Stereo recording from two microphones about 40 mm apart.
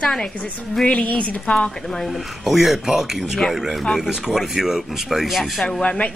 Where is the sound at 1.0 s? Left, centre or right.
Left.